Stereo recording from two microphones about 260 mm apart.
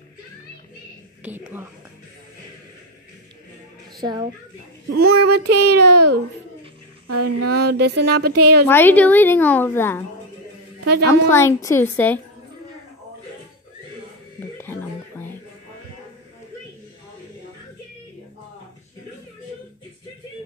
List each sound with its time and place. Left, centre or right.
1.2 s a woman's voice: centre
4.0 s a woman's voice: centre
4.9 s child singing: right
5.4 s a woman's voice: right
8.6 s a woman's voice: centre
11.1 s a woman's voice: centre
14.6 s a sound: centre